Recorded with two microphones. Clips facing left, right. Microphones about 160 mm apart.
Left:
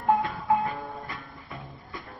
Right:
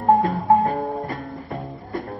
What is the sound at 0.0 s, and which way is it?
Music, 40° right (ahead or behind).